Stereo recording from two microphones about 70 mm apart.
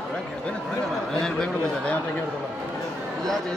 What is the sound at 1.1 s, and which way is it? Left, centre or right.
Speech, centre.